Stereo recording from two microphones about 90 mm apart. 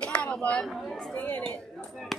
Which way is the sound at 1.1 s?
15° left (ahead or behind).